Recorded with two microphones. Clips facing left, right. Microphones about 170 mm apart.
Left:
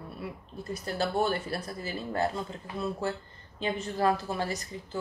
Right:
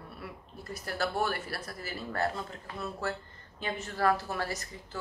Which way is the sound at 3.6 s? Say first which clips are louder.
Left 3 dB; 20° left (ahead or behind).